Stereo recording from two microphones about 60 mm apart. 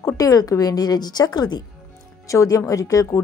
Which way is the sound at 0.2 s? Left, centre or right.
Left.